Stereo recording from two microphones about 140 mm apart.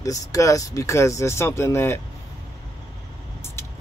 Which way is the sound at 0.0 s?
25° left (ahead or behind).